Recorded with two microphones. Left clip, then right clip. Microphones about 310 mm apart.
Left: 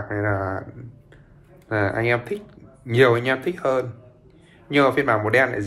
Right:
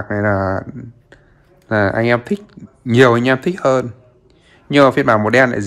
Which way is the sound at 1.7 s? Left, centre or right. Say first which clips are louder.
Right 7 dB; right.